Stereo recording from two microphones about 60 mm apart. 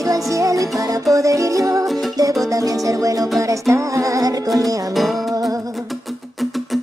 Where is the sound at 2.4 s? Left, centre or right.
Right.